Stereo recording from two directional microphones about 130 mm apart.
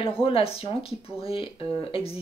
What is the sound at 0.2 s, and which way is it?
Speech, 45° left (ahead or behind).